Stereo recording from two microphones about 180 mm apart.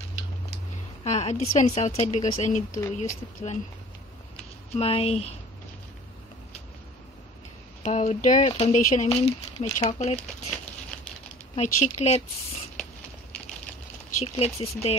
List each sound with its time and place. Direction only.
1.0 s a woman's voice: 40° left (ahead or behind)
4.7 s a woman's voice: 35° left (ahead or behind)
7.8 s a woman's voice: 35° left (ahead or behind)
11.5 s a woman's voice: 40° left (ahead or behind)
14.2 s a woman's voice: 35° left (ahead or behind)